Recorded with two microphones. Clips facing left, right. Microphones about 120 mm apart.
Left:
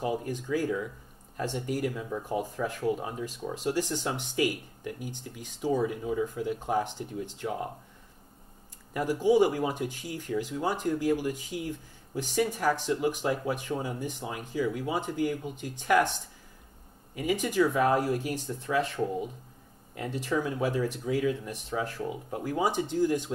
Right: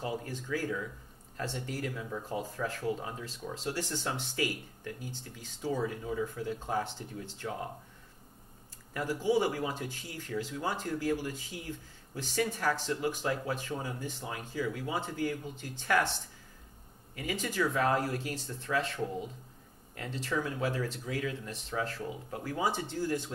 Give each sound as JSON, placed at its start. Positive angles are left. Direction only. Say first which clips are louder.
{"t": 0.0, "sound": "speech", "louder": "left 6 dB", "side_deg": 15}
{"t": 8.9, "sound": "speech", "louder": "left 5 dB", "side_deg": 15}
{"t": 20.0, "sound": "speech", "louder": "left 4 dB", "side_deg": 15}